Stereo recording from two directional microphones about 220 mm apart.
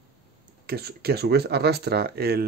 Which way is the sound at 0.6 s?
45° right (ahead or behind).